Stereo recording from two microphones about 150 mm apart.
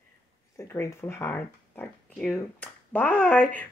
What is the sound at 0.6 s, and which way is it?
Speech, 15° left (ahead or behind).